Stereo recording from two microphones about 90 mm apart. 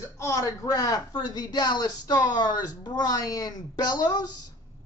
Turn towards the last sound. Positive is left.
turn(degrees=50)  # may be behind; listen again after turning